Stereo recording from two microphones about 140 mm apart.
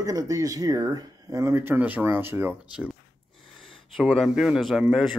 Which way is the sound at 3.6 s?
Centre (ahead or behind).